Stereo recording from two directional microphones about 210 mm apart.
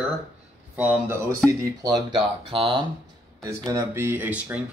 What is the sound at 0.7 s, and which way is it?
Speech, 10° right (ahead or behind).